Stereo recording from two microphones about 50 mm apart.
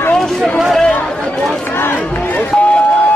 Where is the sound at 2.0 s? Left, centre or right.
Left.